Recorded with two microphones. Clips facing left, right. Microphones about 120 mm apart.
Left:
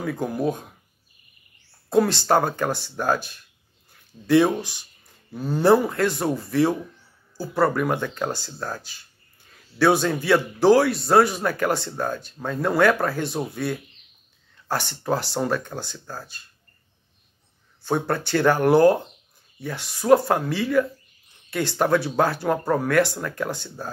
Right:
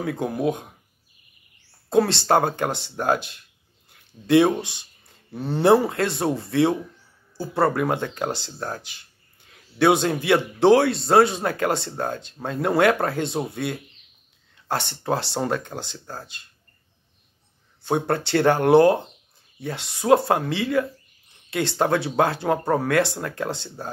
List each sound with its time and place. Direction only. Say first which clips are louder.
0.1 s speech: even; 20° right (ahead or behind)
1.9 s speech: even; 25° right (ahead or behind)
17.8 s speech: right 1 dB; 25° right (ahead or behind)
21.5 s speech: left 1 dB; 25° right (ahead or behind)
22.0 s speech: right 1 dB; 55° right (ahead or behind)
22.3 s speech: right 1 dB; 25° right (ahead or behind)